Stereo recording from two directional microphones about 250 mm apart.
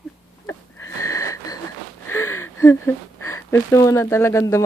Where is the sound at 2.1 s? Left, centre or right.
Centre.